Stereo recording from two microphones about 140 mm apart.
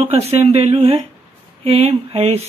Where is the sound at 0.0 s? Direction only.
50° right (ahead or behind).